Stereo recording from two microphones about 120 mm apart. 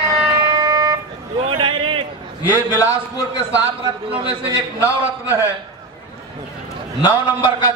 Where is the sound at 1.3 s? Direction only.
45° right (ahead or behind).